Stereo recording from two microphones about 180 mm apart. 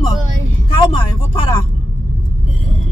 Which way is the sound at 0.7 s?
25° left (ahead or behind).